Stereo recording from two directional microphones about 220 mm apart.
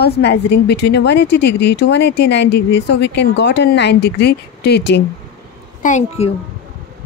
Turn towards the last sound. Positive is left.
turn(degrees=30)  # may be behind; listen again after turning